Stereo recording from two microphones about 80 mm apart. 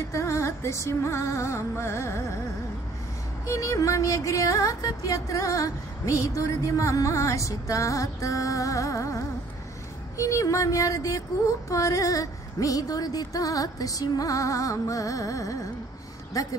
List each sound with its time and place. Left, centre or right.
0.1 s music: left
3.4 s music: left